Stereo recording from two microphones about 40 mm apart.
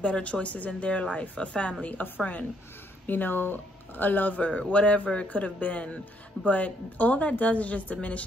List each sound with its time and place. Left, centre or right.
0.0 s a woman's voice: left
3.1 s speech: left
4.5 s a woman's voice: left